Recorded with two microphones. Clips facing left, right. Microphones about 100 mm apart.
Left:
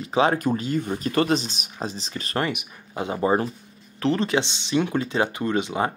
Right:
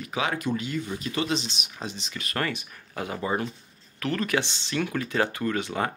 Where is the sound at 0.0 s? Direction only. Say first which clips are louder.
Left 8 dB; 30° left (ahead or behind).